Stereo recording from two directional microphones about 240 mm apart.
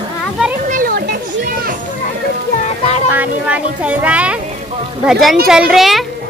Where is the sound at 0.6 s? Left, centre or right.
Right.